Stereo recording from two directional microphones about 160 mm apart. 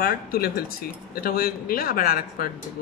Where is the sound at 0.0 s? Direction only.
70° left (ahead or behind).